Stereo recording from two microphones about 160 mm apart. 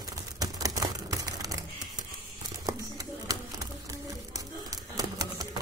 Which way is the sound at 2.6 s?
20° right (ahead or behind).